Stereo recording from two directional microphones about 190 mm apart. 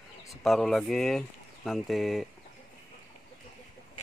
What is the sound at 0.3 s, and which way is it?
Speech, centre (ahead or behind).